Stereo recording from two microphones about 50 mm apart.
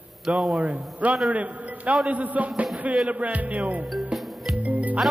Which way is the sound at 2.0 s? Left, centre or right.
Right.